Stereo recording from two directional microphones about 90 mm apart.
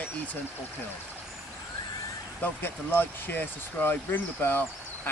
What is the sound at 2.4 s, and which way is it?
Speech, 25° left (ahead or behind).